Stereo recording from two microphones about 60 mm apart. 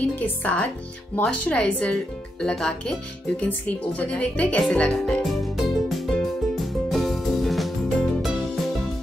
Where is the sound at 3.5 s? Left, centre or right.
Left.